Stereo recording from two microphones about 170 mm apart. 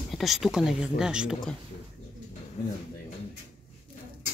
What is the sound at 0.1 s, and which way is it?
Speech, centre (ahead or behind).